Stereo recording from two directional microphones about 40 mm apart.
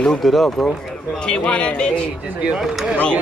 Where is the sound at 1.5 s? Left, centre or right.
Left.